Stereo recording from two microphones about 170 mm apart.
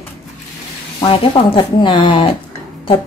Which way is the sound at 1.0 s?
30° left (ahead or behind).